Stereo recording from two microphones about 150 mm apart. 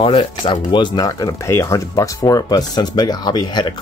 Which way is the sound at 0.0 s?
35° left (ahead or behind).